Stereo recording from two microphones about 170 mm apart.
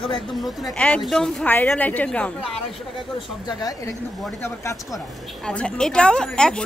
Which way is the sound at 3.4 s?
20° left (ahead or behind).